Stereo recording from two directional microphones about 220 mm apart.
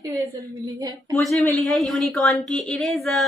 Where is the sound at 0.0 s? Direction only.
15° right (ahead or behind).